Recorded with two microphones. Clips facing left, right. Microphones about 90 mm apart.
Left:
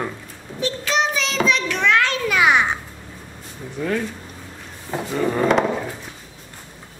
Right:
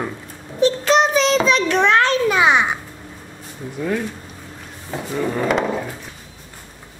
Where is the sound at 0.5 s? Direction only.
30° right (ahead or behind).